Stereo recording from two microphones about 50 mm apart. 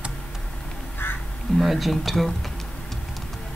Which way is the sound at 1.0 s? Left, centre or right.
Left.